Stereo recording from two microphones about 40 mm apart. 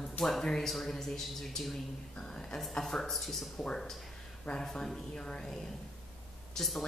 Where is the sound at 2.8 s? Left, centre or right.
Centre.